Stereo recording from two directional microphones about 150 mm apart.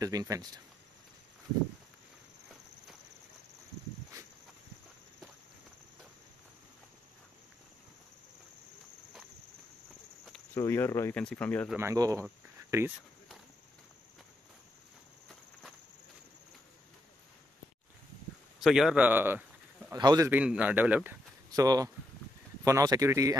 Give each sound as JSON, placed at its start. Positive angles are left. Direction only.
{"t": 0.0, "sound": "speech", "side_deg": -25}
{"t": 10.5, "sound": "speech", "side_deg": 15}
{"t": 11.7, "sound": "speech", "side_deg": -20}
{"t": 18.6, "sound": "speech", "side_deg": 0}
{"t": 19.9, "sound": "speech", "side_deg": -25}
{"t": 20.2, "sound": "speech", "side_deg": -10}
{"t": 21.5, "sound": "speech", "side_deg": -25}